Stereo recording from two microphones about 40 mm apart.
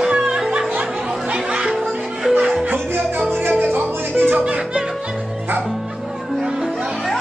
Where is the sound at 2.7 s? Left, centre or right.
Right.